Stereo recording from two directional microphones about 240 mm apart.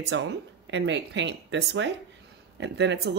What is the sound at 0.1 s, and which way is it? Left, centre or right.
Speech, right.